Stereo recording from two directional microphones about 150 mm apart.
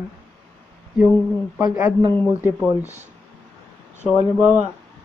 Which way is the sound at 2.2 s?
15° right (ahead or behind).